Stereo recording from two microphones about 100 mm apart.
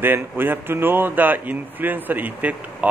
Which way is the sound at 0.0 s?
20° right (ahead or behind).